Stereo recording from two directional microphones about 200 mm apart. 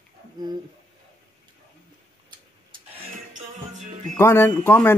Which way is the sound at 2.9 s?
35° right (ahead or behind).